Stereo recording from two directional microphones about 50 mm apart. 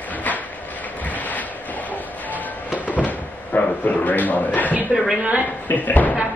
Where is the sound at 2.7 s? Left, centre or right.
Left.